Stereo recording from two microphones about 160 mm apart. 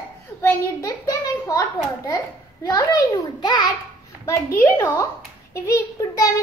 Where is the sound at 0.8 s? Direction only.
20° left (ahead or behind).